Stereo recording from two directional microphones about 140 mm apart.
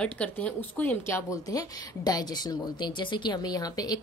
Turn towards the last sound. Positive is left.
turn(degrees=30)  # may be behind; listen again after turning